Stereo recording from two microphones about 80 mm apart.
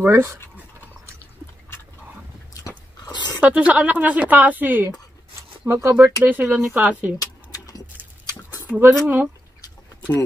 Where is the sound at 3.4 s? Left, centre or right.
Centre.